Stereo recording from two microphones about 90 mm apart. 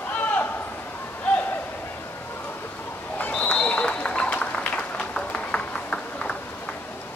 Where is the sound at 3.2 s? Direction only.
15° left (ahead or behind).